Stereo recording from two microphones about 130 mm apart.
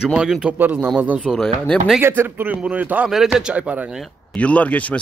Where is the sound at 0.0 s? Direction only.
5° right (ahead or behind).